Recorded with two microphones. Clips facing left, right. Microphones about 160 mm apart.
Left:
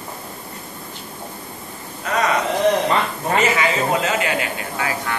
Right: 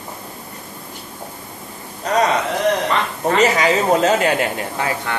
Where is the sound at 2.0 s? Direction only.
35° right (ahead or behind).